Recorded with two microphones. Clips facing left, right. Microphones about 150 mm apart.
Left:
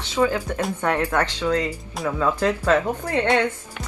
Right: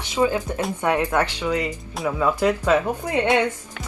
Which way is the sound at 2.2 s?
10° right (ahead or behind).